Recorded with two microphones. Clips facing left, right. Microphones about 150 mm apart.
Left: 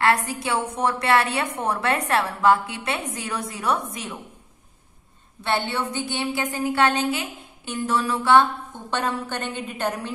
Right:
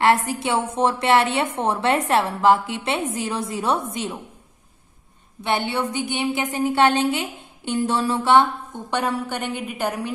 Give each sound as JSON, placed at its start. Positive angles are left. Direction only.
{"t": 0.0, "sound": "a woman's voice", "side_deg": -25}
{"t": 5.4, "sound": "a woman's voice", "side_deg": -15}
{"t": 8.9, "sound": "a woman's voice", "side_deg": -10}